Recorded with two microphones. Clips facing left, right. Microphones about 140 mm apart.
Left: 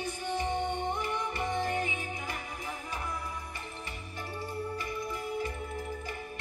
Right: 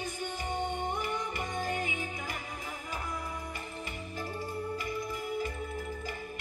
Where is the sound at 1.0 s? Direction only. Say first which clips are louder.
Left 1 dB; 25° left (ahead or behind).